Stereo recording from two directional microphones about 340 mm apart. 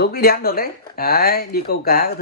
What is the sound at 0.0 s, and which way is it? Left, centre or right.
Speech, left.